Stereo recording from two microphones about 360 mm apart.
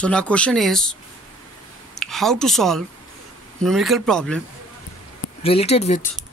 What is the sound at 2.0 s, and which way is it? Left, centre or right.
Speech, centre.